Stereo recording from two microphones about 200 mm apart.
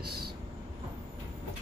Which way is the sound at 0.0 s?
50° right (ahead or behind).